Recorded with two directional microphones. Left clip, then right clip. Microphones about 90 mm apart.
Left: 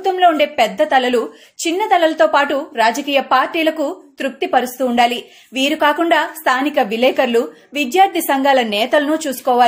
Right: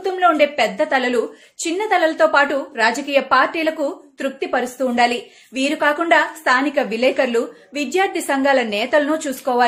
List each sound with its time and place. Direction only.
0.0 s a woman's voice: 25° left (ahead or behind)